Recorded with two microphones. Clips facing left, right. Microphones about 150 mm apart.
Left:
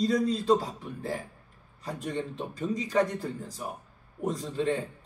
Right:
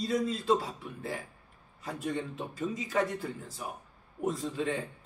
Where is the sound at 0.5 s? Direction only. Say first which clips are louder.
Left 4 dB; 40° left (ahead or behind).